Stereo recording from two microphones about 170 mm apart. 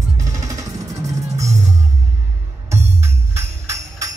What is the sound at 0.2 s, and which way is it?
Music, 20° right (ahead or behind).